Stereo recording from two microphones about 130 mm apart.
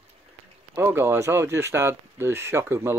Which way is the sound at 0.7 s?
20° right (ahead or behind).